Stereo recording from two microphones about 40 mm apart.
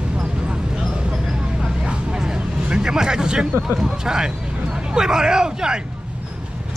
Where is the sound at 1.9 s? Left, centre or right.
Centre.